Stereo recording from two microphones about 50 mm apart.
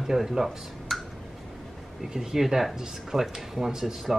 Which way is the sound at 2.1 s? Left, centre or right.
Centre.